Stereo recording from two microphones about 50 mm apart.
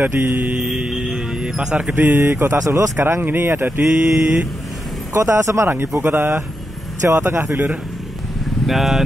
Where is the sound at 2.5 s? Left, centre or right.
Right.